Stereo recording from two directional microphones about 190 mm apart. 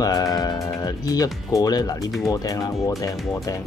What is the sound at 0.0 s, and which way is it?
Speech, 20° left (ahead or behind).